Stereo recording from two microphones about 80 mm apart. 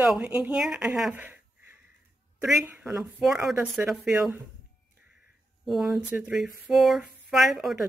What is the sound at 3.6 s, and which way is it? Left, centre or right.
Speech, right.